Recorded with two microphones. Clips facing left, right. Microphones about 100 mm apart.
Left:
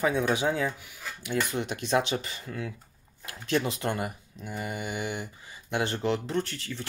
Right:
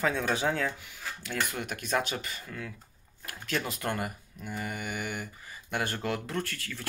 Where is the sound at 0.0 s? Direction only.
15° left (ahead or behind).